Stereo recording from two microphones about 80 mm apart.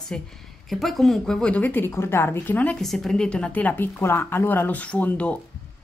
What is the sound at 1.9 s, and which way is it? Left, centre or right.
Speech, left.